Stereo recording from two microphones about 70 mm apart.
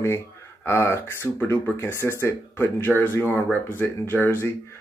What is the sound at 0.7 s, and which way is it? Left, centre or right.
Speech, left.